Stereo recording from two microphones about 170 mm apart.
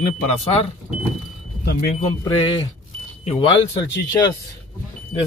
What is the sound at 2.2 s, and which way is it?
A man's voice, 25° left (ahead or behind).